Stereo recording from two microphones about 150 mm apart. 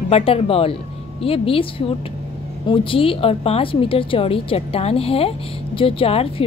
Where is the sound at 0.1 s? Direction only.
40° left (ahead or behind).